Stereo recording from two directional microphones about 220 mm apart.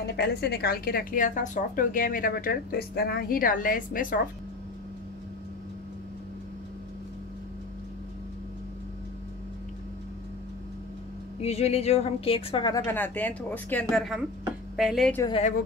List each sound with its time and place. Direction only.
0.0 s a woman's voice: 50° left (ahead or behind)
11.4 s a woman's voice: 30° left (ahead or behind); by 15.2 s centre (ahead or behind)
15.2 s a woman's voice: 25° left (ahead or behind)